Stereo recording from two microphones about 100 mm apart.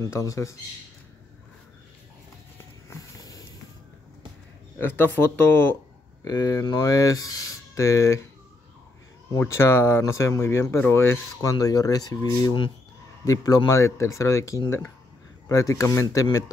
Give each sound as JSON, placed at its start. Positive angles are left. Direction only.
{"t": 0.0, "sound": "speech", "side_deg": 30}
{"t": 2.9, "sound": "a sound", "side_deg": 35}
{"t": 4.7, "sound": "speech", "side_deg": 20}
{"t": 6.2, "sound": "speech", "side_deg": 40}
{"t": 9.4, "sound": "speech", "side_deg": 25}
{"t": 11.5, "sound": "speech", "side_deg": 40}